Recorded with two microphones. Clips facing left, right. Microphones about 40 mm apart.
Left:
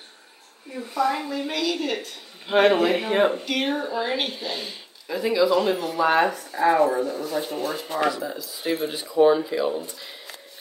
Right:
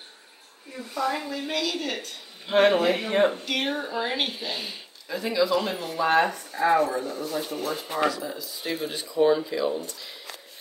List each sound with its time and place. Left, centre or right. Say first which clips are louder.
0.7 s a woman's voice: left 4 dB; centre
5.0 s speech: left 4 dB; centre
6.8 s speech: left 5 dB; left
7.3 s a woman's voice: left 3 dB; centre
8.5 s a woman's voice: left 6 dB; centre